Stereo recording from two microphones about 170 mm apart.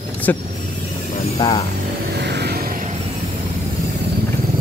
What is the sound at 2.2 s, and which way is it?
Vehicle, 80° right.